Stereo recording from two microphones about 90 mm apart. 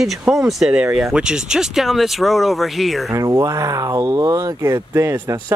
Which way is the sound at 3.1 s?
40° right (ahead or behind).